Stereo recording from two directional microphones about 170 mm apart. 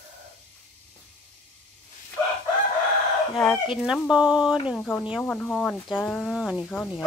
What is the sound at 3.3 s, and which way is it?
Speech, 5° left (ahead or behind).